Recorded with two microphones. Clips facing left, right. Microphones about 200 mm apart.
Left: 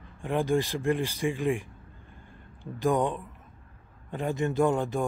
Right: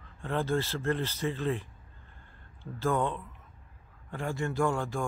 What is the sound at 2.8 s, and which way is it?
A man's voice, 15° left (ahead or behind).